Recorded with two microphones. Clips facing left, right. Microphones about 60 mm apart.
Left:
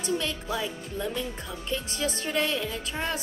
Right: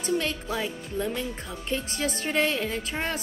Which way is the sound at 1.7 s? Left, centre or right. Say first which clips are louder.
Right 1 dB; right.